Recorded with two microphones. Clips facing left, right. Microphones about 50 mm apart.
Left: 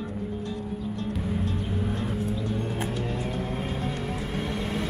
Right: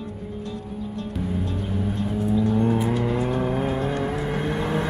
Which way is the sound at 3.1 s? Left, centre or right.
Right.